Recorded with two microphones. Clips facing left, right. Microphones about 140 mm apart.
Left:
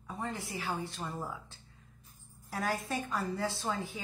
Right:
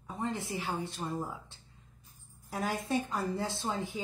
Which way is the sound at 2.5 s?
25° right (ahead or behind).